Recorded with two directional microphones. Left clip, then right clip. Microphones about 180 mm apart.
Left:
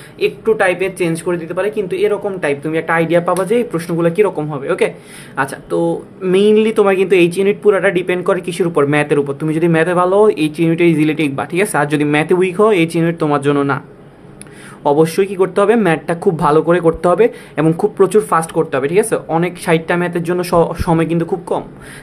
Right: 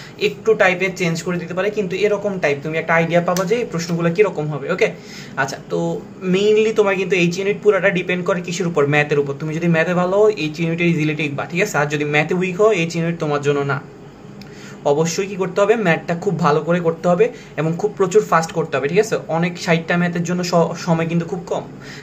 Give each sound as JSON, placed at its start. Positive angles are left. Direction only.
{"t": 0.2, "sound": "a man's voice", "side_deg": 35}
{"t": 14.8, "sound": "a man's voice", "side_deg": 50}